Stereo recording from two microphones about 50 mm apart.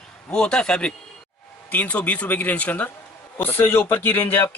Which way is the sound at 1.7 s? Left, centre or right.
Left.